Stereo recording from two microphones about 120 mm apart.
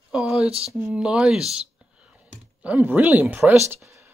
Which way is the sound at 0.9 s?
5° right (ahead or behind).